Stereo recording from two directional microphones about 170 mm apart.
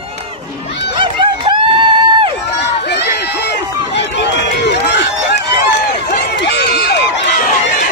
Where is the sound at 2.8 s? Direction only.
80° left.